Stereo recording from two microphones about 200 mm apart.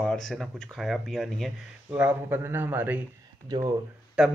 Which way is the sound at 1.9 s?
10° right (ahead or behind).